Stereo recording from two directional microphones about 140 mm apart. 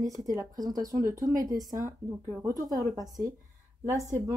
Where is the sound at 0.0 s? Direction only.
25° right (ahead or behind).